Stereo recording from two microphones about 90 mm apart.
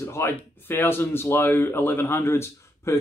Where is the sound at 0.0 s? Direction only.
30° left (ahead or behind).